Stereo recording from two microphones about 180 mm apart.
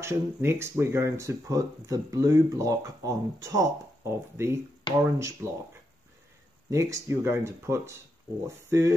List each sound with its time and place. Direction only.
0.0 s speech: 15° right (ahead or behind)
6.7 s speech: 15° right (ahead or behind)